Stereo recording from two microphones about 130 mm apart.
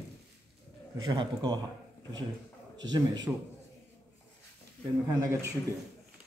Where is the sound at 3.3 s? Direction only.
10° right (ahead or behind).